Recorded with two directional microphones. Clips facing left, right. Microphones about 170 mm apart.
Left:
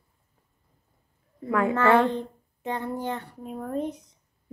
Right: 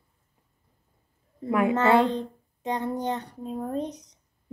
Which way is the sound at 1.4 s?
20° right (ahead or behind).